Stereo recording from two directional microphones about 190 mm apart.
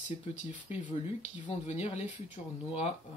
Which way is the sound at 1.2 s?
35° left (ahead or behind).